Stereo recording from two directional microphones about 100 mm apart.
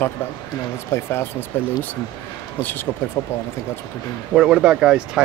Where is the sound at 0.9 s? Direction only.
25° left (ahead or behind).